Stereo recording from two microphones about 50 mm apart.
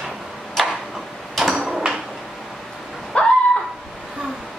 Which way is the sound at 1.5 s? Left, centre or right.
Centre.